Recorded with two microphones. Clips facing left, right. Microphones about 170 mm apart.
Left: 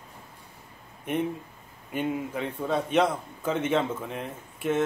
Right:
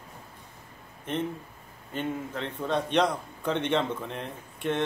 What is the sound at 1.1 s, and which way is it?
Speech, 15° left (ahead or behind).